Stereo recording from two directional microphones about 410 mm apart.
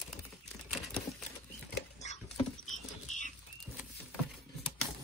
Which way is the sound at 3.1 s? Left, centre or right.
Centre.